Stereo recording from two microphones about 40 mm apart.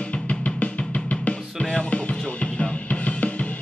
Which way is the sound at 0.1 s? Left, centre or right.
Left.